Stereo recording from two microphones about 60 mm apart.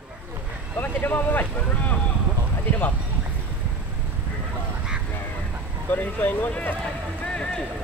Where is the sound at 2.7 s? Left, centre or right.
Left.